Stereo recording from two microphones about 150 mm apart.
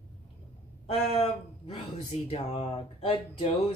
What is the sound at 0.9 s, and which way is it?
Speech, 45° left (ahead or behind).